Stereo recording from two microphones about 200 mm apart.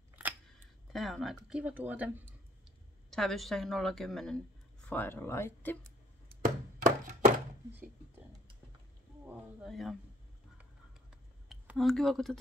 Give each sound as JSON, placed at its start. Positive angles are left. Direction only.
{"t": 0.1, "sound": "camera", "side_deg": -5}
{"t": 3.1, "sound": "a woman's voice", "side_deg": 0}
{"t": 6.2, "sound": "chopping", "side_deg": -45}
{"t": 9.2, "sound": "a woman's voice", "side_deg": -5}
{"t": 11.4, "sound": "speech", "side_deg": 0}